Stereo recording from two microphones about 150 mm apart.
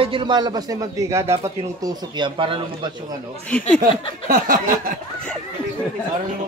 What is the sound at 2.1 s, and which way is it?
Speech, 35° right (ahead or behind).